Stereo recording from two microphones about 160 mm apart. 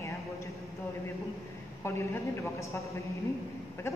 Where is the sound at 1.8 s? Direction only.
15° left (ahead or behind).